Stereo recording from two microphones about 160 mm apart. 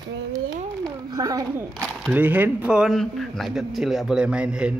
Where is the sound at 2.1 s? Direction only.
10° right (ahead or behind).